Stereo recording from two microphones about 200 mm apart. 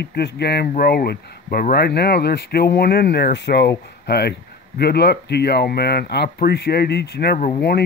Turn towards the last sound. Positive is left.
turn(degrees=55)  # may be behind; listen again after turning